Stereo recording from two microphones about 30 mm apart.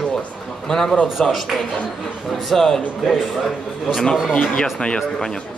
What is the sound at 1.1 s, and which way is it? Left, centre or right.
Speech, centre.